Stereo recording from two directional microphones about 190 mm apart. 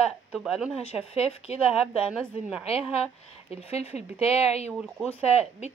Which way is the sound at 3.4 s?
30° left (ahead or behind).